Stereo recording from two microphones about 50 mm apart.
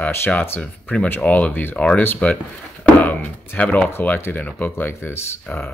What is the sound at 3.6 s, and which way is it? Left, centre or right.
Speech, left.